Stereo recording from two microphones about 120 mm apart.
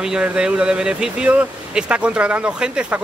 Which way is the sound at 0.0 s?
5° right (ahead or behind).